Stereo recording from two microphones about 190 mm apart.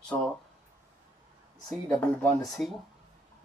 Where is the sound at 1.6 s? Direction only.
5° left (ahead or behind).